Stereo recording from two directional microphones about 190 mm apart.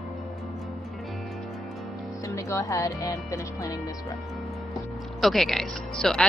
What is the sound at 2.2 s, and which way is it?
Speech, 15° left (ahead or behind).